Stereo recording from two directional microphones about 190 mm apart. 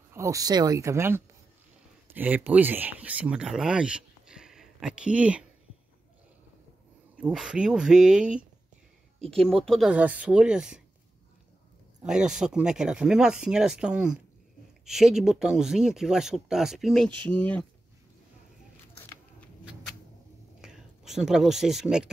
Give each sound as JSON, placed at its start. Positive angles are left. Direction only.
{"t": 0.1, "sound": "speech", "side_deg": -15}
{"t": 7.2, "sound": "speech", "side_deg": -5}
{"t": 9.3, "sound": "speech", "side_deg": 5}
{"t": 12.1, "sound": "speech", "side_deg": -5}
{"t": 20.6, "sound": "speech", "side_deg": 0}